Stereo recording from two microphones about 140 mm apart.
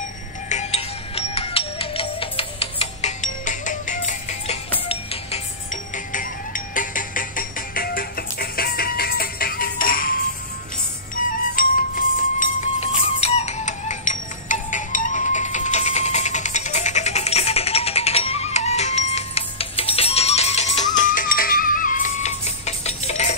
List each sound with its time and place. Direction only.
0.5 s music: 55° left (ahead or behind)
4.8 s music: 45° left (ahead or behind)
5.7 s music: 70° left (ahead or behind); by 10.2 s 85° left
11.2 s music: 65° left (ahead or behind)
11.6 s music: 80° left
12.4 s music: 55° left (ahead or behind)
20.9 s music: 70° left (ahead or behind); by 23.3 s 50° left (ahead or behind)